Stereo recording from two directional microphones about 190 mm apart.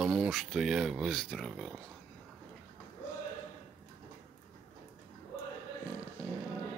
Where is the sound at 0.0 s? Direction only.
5° right (ahead or behind).